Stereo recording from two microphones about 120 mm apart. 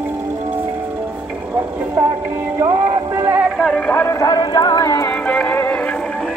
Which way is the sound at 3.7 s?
15° left (ahead or behind).